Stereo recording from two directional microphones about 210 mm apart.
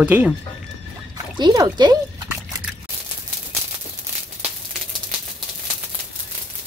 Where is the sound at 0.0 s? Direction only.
5° right (ahead or behind).